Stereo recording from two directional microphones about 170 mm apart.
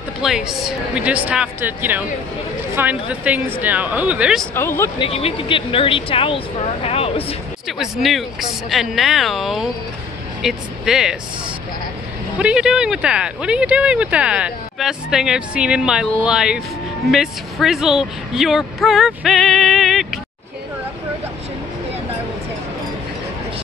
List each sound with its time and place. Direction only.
0.2 s a woman's voice: centre (ahead or behind)
4.6 s speech: 15° left (ahead or behind)
4.9 s speech: 35° left (ahead or behind)
7.6 s speech: centre (ahead or behind)
12.4 s speech: 5° right (ahead or behind)